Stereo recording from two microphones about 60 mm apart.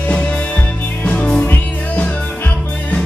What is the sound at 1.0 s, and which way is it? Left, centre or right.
Music, left.